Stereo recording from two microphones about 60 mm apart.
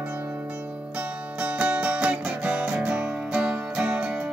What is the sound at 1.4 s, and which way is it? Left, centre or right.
Music, right.